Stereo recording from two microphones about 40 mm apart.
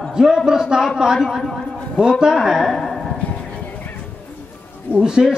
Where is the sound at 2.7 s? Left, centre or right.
Centre.